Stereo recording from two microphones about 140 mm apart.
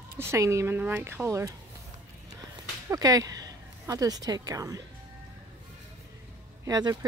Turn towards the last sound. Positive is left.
turn(degrees=-25)  # may be behind; listen again after turning